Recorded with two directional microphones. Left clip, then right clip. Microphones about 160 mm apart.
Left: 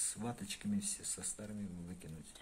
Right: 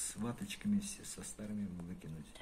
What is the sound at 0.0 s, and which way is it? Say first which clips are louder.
Speech: even; 75° left (ahead or behind).